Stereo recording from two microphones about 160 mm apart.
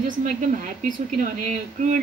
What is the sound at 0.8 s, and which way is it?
A woman's voice, 50° right (ahead or behind).